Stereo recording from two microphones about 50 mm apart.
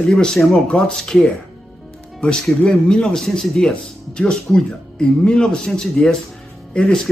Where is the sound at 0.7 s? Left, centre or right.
Centre.